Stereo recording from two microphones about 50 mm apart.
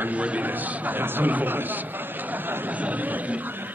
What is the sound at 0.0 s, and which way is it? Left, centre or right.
A man's voice, right.